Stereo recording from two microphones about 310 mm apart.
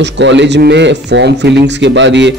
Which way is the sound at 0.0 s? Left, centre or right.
Right.